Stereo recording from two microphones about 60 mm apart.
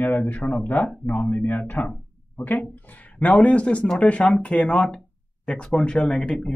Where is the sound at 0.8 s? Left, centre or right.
Centre.